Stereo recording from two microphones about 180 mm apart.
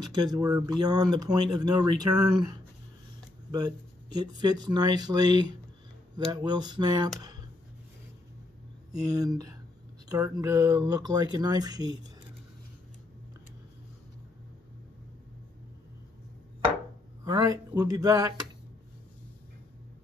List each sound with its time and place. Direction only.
0.1 s speech: 20° right (ahead or behind)
3.5 s speech: 25° right (ahead or behind)
8.9 s speech: 20° right (ahead or behind)
17.2 s speech: 20° right (ahead or behind)